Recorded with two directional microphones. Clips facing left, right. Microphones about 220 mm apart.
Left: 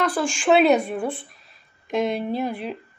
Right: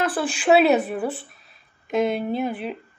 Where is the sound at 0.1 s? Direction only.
35° right (ahead or behind).